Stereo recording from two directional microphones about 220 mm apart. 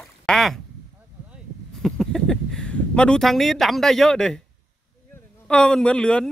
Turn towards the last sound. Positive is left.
turn(degrees=5)  # may be behind; listen again after turning